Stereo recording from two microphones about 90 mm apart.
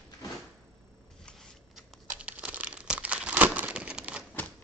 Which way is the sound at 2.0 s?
15° right (ahead or behind).